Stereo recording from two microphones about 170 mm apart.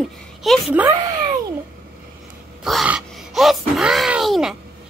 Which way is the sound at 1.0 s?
25° right (ahead or behind).